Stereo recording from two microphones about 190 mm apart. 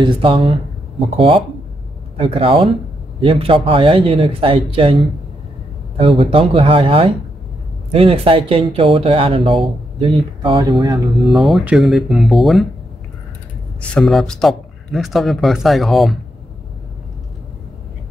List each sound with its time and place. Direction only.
0.0 s speech: 25° right (ahead or behind)
11.1 s speech: centre (ahead or behind)
13.7 s speech: centre (ahead or behind)